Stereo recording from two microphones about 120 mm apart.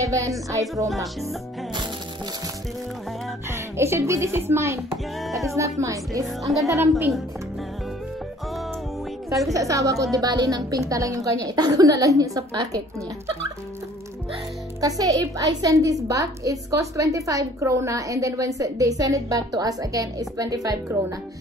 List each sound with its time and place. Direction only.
0.0 s music: 25° right (ahead or behind)
0.5 s a woman's voice: 25° right (ahead or behind)
3.4 s a woman's voice: 20° right (ahead or behind)
9.5 s a woman's voice: 25° right (ahead or behind)
14.8 s a woman's voice: 30° right (ahead or behind)